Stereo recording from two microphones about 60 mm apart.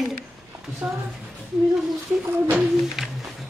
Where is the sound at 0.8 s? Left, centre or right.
Right.